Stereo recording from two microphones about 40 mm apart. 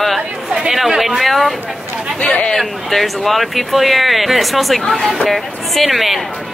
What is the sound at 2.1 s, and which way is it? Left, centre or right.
Speech, left.